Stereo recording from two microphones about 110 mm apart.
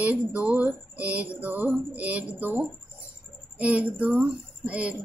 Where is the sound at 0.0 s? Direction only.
15° right (ahead or behind).